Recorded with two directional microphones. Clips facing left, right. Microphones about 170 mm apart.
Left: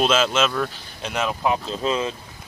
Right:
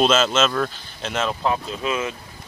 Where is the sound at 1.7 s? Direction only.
30° left (ahead or behind).